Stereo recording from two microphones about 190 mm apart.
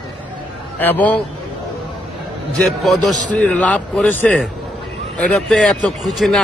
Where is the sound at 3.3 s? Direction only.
5° left (ahead or behind).